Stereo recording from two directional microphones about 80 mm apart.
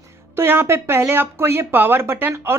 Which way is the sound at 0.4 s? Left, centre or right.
Right.